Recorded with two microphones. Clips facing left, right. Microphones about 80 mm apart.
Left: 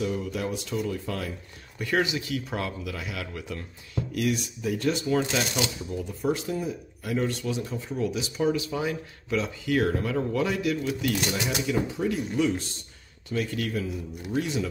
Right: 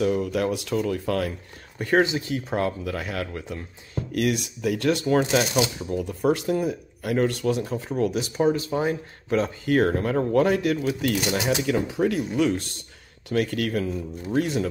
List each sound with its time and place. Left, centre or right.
0.0 s speech: right
1.8 s speech: right
3.3 s speech: right
4.1 s speech: right
5.0 s speech: right
8.4 s speech: right